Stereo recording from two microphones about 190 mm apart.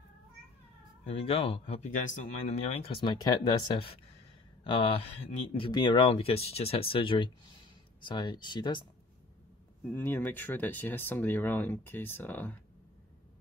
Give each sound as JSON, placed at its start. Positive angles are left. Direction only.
{"t": 1.0, "sound": "speech", "side_deg": 30}
{"t": 9.9, "sound": "speech", "side_deg": 10}